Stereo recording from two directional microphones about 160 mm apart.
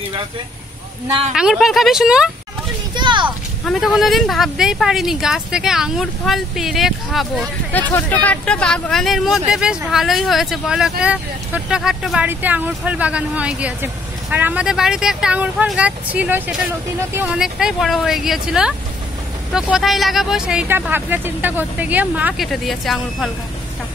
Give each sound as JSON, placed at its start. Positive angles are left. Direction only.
{"t": 1.3, "sound": "speech", "side_deg": -5}
{"t": 3.0, "sound": "a sound", "side_deg": -30}
{"t": 3.6, "sound": "speech", "side_deg": 0}
{"t": 7.9, "sound": "speech", "side_deg": 10}
{"t": 22.5, "sound": "speech", "side_deg": 0}